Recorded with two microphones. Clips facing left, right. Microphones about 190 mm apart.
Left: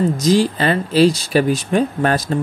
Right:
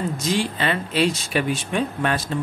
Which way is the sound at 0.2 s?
40° left (ahead or behind).